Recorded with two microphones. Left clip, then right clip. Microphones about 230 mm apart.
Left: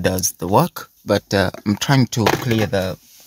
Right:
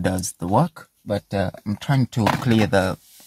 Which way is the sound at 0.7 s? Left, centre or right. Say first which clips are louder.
Left 7 dB; left.